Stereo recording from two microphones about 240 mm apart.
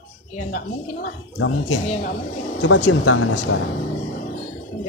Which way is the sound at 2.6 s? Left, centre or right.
Left.